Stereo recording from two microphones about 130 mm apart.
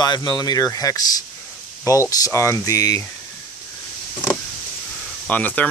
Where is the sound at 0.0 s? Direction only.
30° left (ahead or behind).